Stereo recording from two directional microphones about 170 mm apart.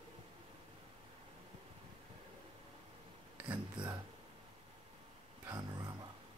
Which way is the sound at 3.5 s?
25° right (ahead or behind).